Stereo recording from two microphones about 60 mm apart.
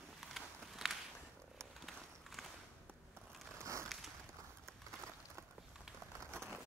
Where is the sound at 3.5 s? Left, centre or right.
Right.